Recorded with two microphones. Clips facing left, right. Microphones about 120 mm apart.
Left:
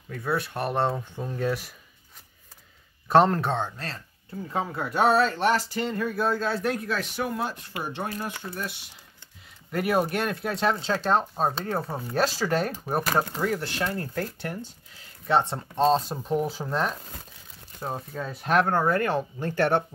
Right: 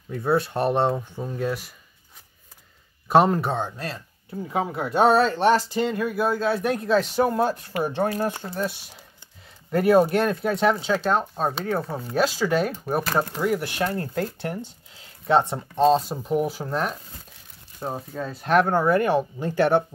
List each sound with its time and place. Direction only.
0.1 s speech: 25° right (ahead or behind); by 1.7 s centre (ahead or behind)
3.1 s speech: 5° right (ahead or behind)
10.9 s speech: centre (ahead or behind)
13.5 s speech: 15° right (ahead or behind)